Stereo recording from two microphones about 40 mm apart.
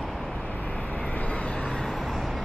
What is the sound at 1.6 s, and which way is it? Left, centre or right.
Vehicle, centre.